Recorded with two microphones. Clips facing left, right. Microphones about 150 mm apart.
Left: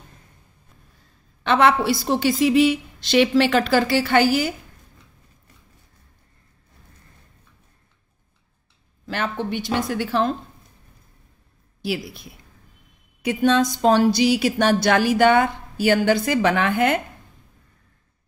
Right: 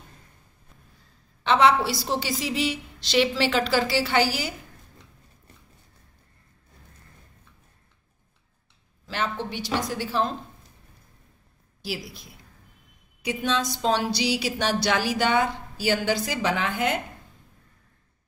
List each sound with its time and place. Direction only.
1.4 s a woman's voice: 55° left (ahead or behind)
9.0 s a woman's voice: 55° left (ahead or behind)
11.8 s speech: 60° left (ahead or behind)